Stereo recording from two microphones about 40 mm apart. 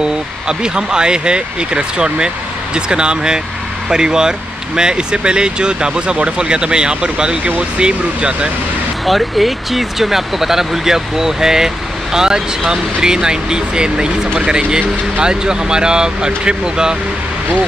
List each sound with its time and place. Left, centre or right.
0.0 s speech: right
9.0 s speech: centre